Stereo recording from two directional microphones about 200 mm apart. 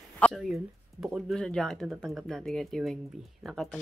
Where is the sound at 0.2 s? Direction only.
Centre (ahead or behind).